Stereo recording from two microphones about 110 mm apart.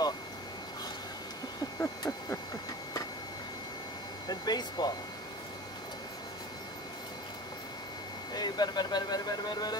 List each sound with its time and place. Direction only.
1.8 s a sound: 25° left (ahead or behind)
4.3 s speech: 40° left (ahead or behind)
8.3 s speech: 40° left (ahead or behind)